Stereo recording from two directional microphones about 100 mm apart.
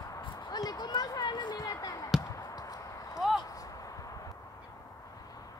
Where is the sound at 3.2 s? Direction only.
Centre (ahead or behind).